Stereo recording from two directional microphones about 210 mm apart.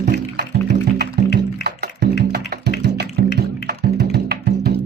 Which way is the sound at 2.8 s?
50° right (ahead or behind).